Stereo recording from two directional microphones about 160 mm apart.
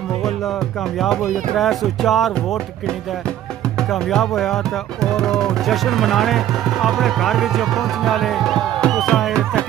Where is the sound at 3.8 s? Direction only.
5° left (ahead or behind).